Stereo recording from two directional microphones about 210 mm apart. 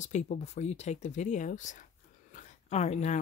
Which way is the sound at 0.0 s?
35° left (ahead or behind).